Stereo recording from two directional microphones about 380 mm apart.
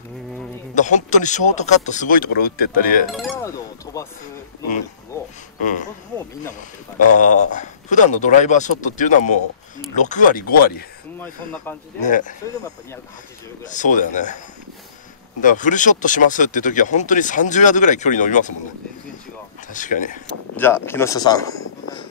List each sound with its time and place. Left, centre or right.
0.7 s speech: centre
3.1 s chink: centre
5.6 s speech: centre
7.2 s speech: centre
12.0 s speech: centre
13.7 s speech: centre
15.4 s speech: centre
19.7 s speech: centre
20.5 s speech: centre